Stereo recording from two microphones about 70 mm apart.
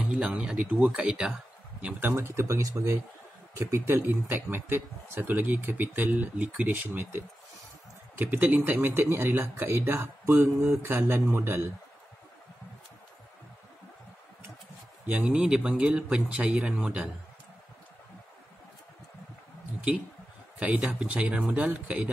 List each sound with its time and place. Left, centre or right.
0.1 s speech: centre
2.0 s speech: right
3.5 s speech: right
15.0 s speech: centre
20.5 s speech: centre